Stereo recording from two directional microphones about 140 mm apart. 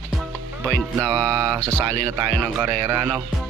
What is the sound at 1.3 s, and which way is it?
Music, 25° right (ahead or behind).